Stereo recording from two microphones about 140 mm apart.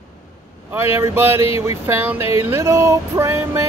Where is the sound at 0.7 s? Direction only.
20° right (ahead or behind).